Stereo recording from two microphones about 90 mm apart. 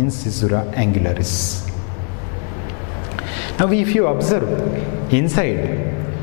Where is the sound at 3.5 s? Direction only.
15° left (ahead or behind).